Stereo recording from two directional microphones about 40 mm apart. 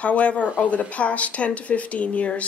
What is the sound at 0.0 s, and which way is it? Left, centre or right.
Speech, left.